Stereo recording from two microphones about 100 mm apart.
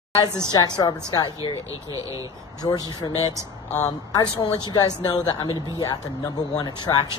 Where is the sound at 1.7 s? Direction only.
35° right (ahead or behind).